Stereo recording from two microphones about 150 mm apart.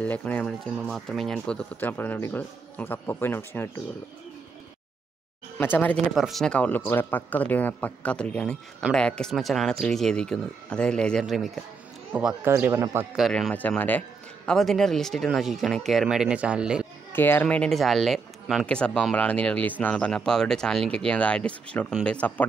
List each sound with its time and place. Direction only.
0.0 s speech: 10° left (ahead or behind)
5.6 s speech: 10° left (ahead or behind)
6.1 s a man's voice: centre (ahead or behind)
12.4 s speech: 20° right (ahead or behind)
13.1 s a man's voice: centre (ahead or behind)
17.1 s speech: 15° left (ahead or behind)